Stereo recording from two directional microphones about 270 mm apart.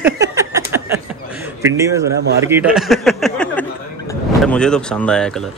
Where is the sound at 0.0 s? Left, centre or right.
Centre.